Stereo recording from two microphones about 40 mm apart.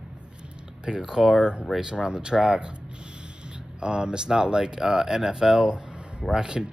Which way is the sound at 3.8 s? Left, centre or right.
Right.